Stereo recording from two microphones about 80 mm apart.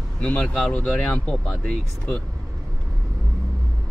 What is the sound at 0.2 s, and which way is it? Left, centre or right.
Speech, centre.